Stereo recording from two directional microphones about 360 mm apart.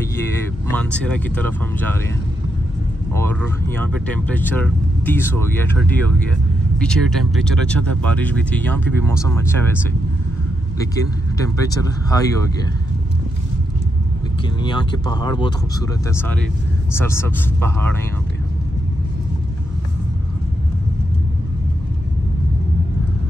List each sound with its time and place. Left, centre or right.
0.7 s speech: centre
3.1 s speech: centre
11.6 s speech: centre
14.6 s speech: centre